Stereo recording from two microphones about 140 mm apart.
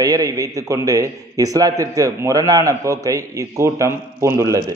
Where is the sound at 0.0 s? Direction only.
25° right (ahead or behind).